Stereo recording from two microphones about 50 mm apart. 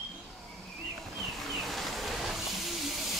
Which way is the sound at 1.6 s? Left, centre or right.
Centre.